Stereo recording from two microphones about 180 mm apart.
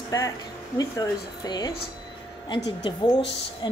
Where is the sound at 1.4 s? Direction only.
25° left (ahead or behind).